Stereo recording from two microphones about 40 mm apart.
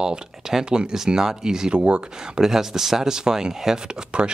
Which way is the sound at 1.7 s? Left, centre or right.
Right.